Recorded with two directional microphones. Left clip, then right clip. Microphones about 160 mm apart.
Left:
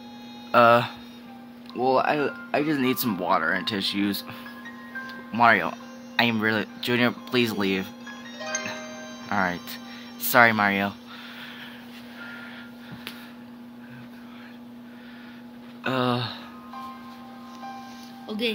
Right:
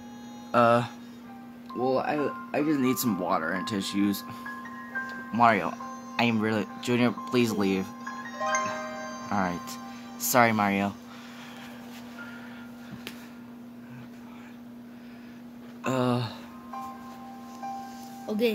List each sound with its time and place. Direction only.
0.5 s speech: 5° left (ahead or behind)
1.8 s speech: 25° left (ahead or behind)
2.8 s speech: centre (ahead or behind)
8.4 s music: 45° right (ahead or behind)
9.3 s speech: 5° right (ahead or behind)
15.8 s a sound: centre (ahead or behind)
18.2 s music: 55° right (ahead or behind)